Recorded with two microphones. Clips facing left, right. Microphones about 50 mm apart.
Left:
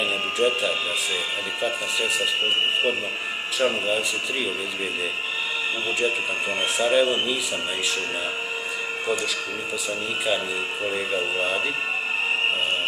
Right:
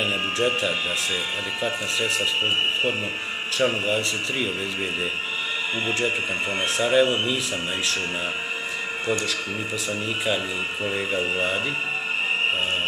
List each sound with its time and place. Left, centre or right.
0.1 s speech: centre
3.5 s speech: centre
6.6 s speech: centre
9.8 s speech: centre